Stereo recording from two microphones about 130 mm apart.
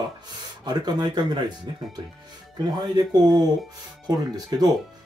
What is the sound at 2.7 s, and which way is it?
Speech, 30° right (ahead or behind).